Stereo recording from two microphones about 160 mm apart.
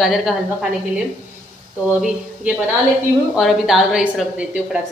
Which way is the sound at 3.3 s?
Centre (ahead or behind).